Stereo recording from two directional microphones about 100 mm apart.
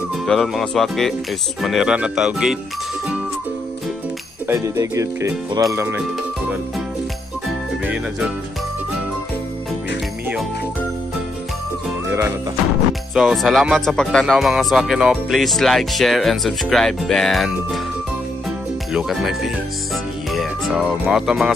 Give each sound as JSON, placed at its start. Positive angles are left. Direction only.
{"t": 0.3, "sound": "speech", "side_deg": 0}
{"t": 4.5, "sound": "speech", "side_deg": -30}
{"t": 7.8, "sound": "music", "side_deg": -15}
{"t": 12.1, "sound": "music", "side_deg": -20}
{"t": 13.1, "sound": "speech", "side_deg": 0}
{"t": 14.2, "sound": "speech", "side_deg": -5}
{"t": 18.9, "sound": "speech", "side_deg": 0}
{"t": 20.3, "sound": "music", "side_deg": 0}
{"t": 21.1, "sound": "speech", "side_deg": -5}